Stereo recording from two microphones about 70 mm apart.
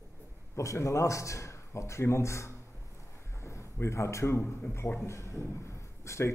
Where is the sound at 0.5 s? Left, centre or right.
Left.